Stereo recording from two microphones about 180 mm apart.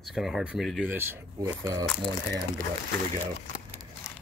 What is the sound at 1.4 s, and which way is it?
Speech, 20° right (ahead or behind).